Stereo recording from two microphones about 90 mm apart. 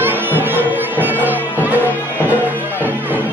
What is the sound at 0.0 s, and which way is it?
Music, 25° right (ahead or behind).